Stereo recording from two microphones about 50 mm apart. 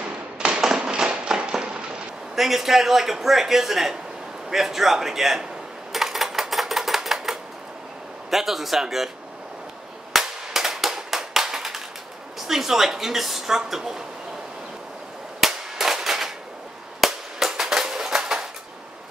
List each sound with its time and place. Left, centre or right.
0.4 s a sound: centre
2.3 s a man's voice: centre
5.9 s typewriter: centre
8.3 s a man's voice: centre
10.1 s cap gun: centre
12.4 s a woman's voice: centre
15.4 s cap gun: centre